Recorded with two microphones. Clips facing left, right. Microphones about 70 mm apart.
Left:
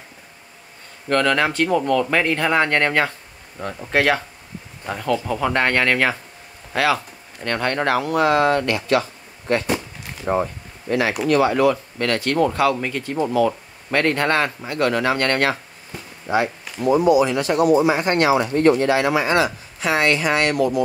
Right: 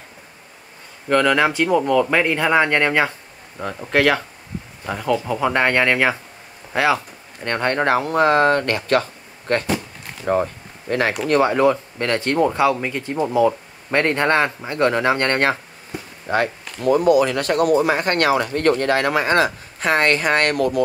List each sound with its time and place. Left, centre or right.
1.0 s speech: centre
3.9 s speech: centre; by 9.7 s right
10.9 s speech: right
11.2 s speech: right
16.8 s speech: right